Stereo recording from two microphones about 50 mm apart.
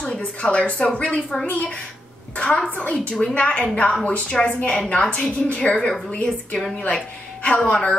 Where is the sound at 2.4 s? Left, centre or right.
Centre.